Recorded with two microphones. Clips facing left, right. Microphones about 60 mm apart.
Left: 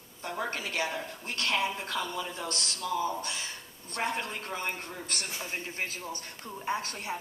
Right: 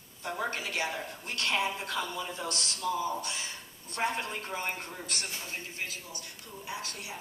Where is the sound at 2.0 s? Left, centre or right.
Right.